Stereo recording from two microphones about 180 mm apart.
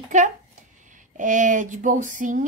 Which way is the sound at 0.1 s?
40° right (ahead or behind).